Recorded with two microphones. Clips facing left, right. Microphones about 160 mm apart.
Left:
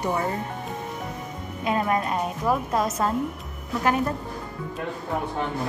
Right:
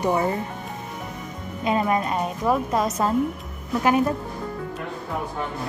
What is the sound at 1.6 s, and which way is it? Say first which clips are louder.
A woman's voice: right 2 dB; centre (ahead or behind).